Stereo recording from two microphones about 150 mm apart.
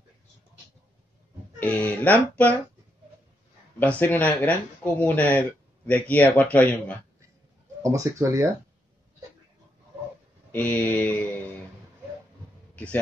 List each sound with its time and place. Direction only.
1.6 s speech: 10° left (ahead or behind)
3.8 s speech: 10° left (ahead or behind)
7.8 s speech: 20° right (ahead or behind)
10.5 s speech: 10° left (ahead or behind)
12.7 s a man's voice: 10° left (ahead or behind)